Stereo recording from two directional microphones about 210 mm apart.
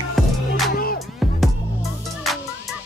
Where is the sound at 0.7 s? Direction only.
45° left (ahead or behind).